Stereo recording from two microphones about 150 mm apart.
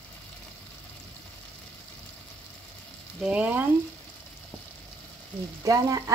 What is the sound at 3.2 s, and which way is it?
Frying, 10° right (ahead or behind).